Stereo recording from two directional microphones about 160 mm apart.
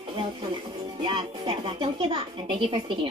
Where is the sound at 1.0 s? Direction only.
30° right (ahead or behind).